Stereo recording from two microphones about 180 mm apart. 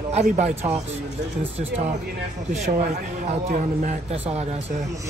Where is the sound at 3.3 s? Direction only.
45° right (ahead or behind).